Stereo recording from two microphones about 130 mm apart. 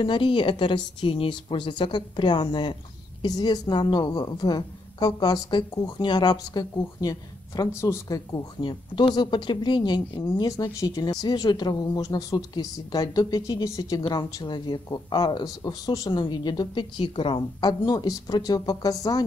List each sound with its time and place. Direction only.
0.0 s a woman's voice: 40° left (ahead or behind)
10.5 s a woman's voice: 25° left (ahead or behind)